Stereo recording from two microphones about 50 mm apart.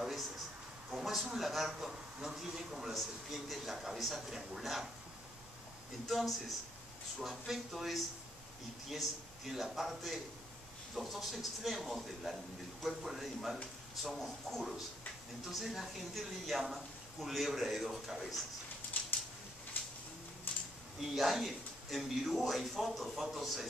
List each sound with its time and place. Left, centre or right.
0.9 s speech: centre
6.0 s speech: centre
19.7 s a sound: left
21.0 s speech: centre